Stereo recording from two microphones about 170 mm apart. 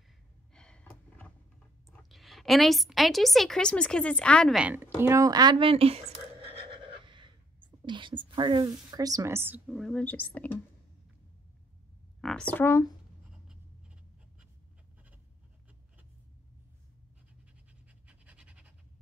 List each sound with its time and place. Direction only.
0.5 s gasp: 5° left (ahead or behind)
1.9 s a woman's voice: centre (ahead or behind)
5.0 s a sound: 20° right (ahead or behind)
7.8 s a woman's voice: 30° right (ahead or behind); by 9.8 s 10° right (ahead or behind)
9.8 s speech: 5° left (ahead or behind)
12.2 s speech: 5° left (ahead or behind)
18.0 s pant: 5° right (ahead or behind)